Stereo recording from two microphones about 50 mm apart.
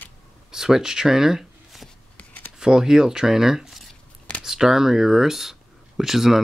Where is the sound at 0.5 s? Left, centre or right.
Centre.